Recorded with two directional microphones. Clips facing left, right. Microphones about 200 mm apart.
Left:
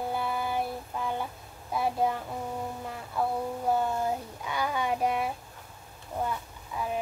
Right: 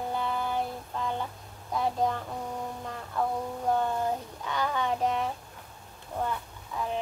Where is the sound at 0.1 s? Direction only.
10° left (ahead or behind).